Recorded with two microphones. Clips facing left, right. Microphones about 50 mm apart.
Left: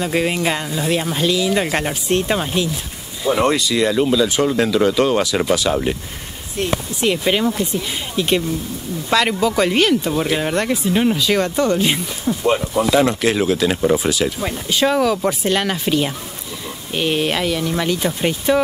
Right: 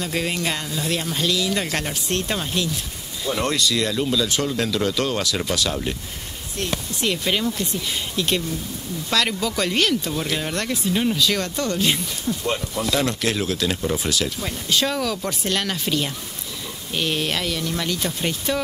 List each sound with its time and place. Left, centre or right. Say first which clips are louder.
0.0 s speech: left 6 dB; centre